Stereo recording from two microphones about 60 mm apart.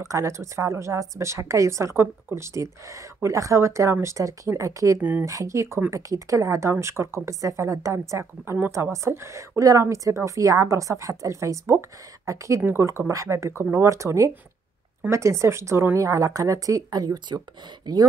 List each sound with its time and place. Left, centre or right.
0.0 s a woman's voice: right
9.6 s a woman's voice: right
12.8 s speech: right
13.1 s a woman's voice: right
16.0 s speech: right